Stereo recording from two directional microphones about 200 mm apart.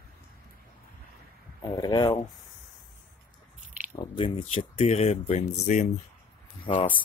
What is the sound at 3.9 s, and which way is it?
Speech, 25° left (ahead or behind).